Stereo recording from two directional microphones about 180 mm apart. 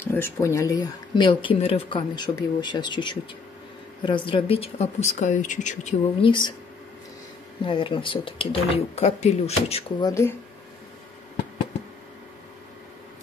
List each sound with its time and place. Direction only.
0.0 s speech: 10° left (ahead or behind); by 5.9 s 40° left (ahead or behind)
6.2 s speech: 25° left (ahead or behind)
7.6 s speech: 30° left (ahead or behind)
10.0 s speech: 15° left (ahead or behind)